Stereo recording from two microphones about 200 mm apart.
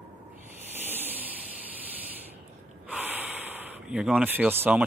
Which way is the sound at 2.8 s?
10° right (ahead or behind).